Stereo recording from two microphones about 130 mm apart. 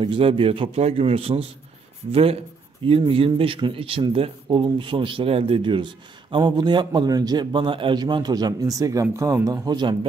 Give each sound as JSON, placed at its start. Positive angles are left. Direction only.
{"t": 0.0, "sound": "a man's voice", "side_deg": -40}
{"t": 3.1, "sound": "a man's voice", "side_deg": -45}